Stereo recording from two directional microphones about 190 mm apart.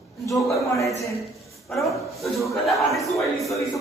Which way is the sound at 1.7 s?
Centre (ahead or behind).